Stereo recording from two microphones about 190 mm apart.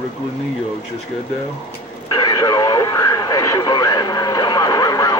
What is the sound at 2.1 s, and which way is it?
Radio, 20° left (ahead or behind).